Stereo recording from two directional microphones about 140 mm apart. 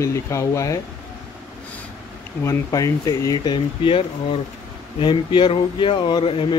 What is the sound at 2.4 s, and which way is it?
Speech, 25° left (ahead or behind).